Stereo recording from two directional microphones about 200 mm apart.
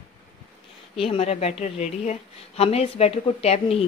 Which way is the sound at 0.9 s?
30° left (ahead or behind).